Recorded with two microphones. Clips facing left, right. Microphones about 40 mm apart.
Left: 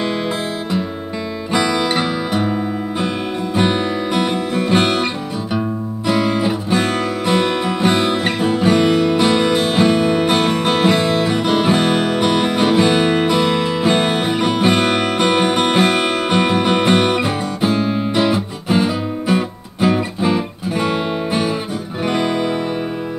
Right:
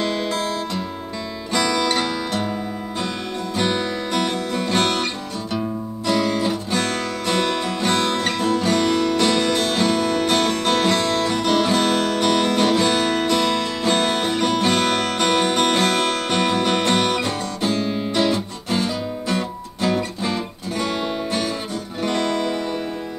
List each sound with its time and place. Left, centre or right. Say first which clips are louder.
1.5 s music: left 3 dB; centre
3.5 s music: left 5 dB; centre